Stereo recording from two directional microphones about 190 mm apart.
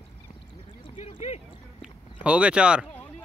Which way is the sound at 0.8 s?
30° left (ahead or behind).